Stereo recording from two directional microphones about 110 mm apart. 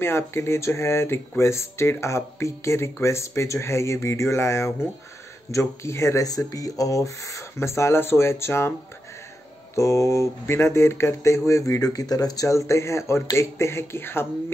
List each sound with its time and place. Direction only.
0.0 s speech: 20° left (ahead or behind)
9.8 s speech: 25° left (ahead or behind)